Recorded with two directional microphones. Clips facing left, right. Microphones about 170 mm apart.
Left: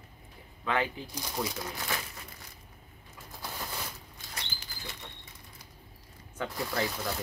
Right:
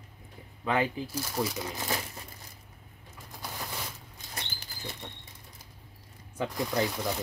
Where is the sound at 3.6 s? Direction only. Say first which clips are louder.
Right 1 dB; centre (ahead or behind).